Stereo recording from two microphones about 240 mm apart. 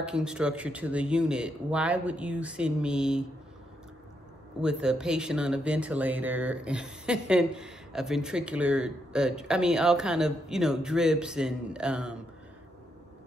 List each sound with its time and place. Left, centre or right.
0.0 s speech: centre
4.6 s speech: centre